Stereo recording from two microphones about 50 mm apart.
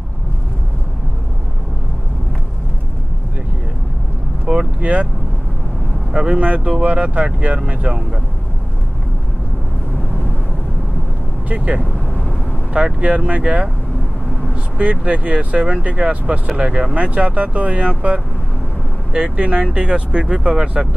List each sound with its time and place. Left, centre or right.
4.5 s vehicle: centre
6.1 s speech: centre
11.4 s speech: right
19.1 s speech: right